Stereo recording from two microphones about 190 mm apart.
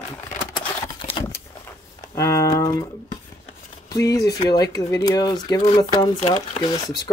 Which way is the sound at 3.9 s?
20° left (ahead or behind).